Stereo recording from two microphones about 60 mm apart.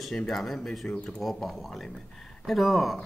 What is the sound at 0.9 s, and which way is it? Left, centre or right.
Speech, centre.